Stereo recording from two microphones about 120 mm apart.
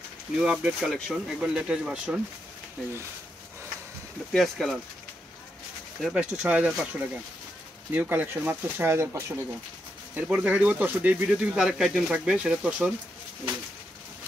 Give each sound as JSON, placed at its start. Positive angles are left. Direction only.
{"t": 0.4, "sound": "speech", "side_deg": -5}
{"t": 4.3, "sound": "speech", "side_deg": 0}
{"t": 5.9, "sound": "speech", "side_deg": -5}
{"t": 10.1, "sound": "speech", "side_deg": -10}